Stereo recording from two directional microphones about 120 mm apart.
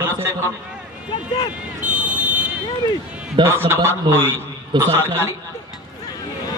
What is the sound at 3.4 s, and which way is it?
Speech, 40° right (ahead or behind).